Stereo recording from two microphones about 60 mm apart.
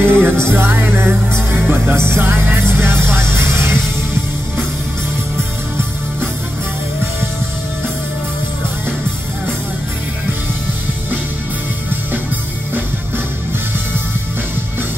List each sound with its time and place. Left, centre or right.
0.0 s music: right